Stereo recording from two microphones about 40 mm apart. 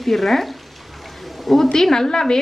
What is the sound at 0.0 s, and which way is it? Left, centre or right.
Frying, centre.